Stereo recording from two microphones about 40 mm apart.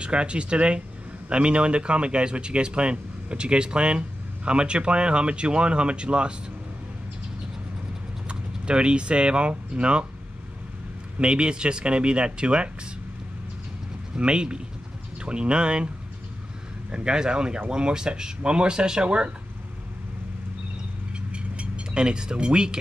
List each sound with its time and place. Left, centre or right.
0.0 s speech: right
8.3 s speech: right
11.1 s speech: right
14.1 s speech: right
16.9 s speech: centre
21.3 s a sound: right